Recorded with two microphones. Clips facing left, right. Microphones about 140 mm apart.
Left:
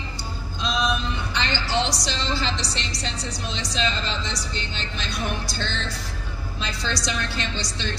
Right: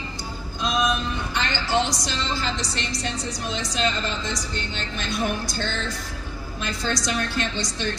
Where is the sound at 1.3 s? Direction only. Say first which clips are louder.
Right 2 dB; 50° right (ahead or behind).